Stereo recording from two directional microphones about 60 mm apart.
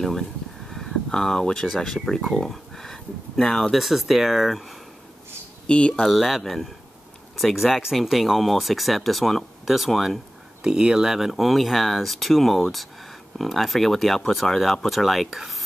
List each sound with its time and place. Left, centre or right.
0.7 s speech: centre
5.7 s speech: centre
5.9 s speech: centre